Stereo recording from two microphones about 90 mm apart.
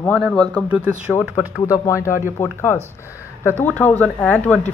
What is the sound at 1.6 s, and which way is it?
Speech, 35° left (ahead or behind).